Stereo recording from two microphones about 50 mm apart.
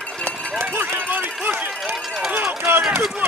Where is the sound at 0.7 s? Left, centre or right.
Right.